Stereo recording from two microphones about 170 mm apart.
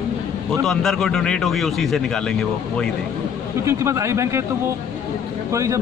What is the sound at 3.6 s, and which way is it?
Speech, 15° right (ahead or behind).